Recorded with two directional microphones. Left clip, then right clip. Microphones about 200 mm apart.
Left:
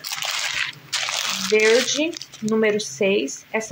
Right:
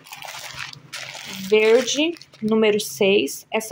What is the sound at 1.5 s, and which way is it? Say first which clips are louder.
Speech: right 1 dB; 5° right (ahead or behind).